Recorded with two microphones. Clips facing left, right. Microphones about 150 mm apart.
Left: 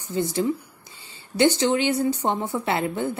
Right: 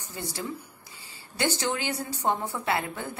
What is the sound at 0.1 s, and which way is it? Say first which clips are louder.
A woman's voice: left 11 dB; 20° left (ahead or behind).